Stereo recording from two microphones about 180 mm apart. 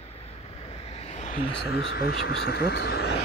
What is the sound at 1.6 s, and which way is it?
Speech, 70° left (ahead or behind).